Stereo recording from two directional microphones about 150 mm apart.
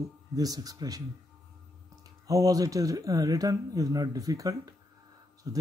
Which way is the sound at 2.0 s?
25° right (ahead or behind).